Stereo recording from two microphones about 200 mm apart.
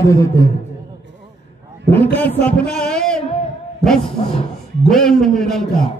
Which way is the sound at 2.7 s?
5° left (ahead or behind).